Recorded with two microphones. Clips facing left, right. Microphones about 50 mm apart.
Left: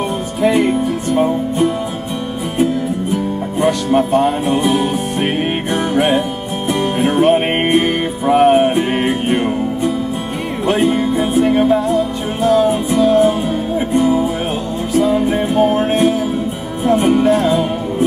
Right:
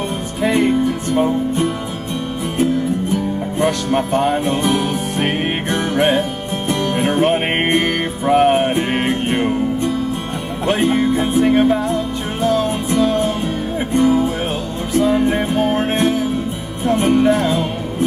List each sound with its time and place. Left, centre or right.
1.1 s music: centre
4.5 s music: centre
11.0 s music: centre
15.0 s music: centre